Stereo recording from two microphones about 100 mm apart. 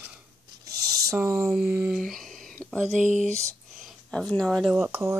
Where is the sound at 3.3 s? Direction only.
30° right (ahead or behind).